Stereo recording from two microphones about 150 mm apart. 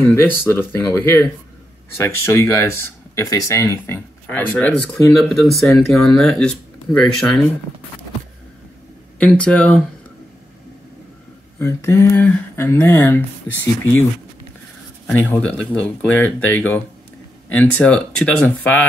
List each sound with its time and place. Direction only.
0.0 s speech: 15° left (ahead or behind)
9.2 s speech: 10° left (ahead or behind)
11.5 s speech: 15° left (ahead or behind)
15.1 s speech: 10° left (ahead or behind)